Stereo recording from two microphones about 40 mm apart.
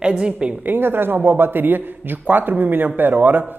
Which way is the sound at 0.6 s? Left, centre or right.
Right.